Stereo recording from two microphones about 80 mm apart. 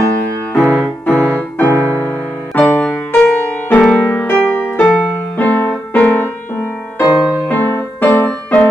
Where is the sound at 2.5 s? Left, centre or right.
Centre.